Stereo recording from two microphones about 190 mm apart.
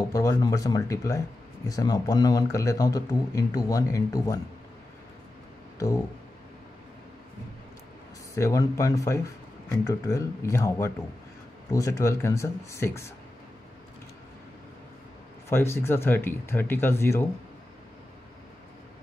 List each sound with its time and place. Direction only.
0.1 s speech: 20° left (ahead or behind)
8.4 s speech: 15° left (ahead or behind)
15.5 s speech: 10° left (ahead or behind)